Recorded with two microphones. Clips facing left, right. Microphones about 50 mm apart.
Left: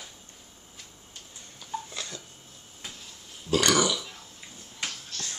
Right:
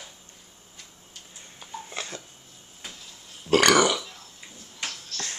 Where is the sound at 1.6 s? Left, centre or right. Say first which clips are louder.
Even; right.